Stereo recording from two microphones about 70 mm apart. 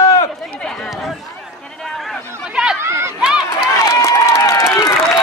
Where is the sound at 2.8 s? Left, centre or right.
Right.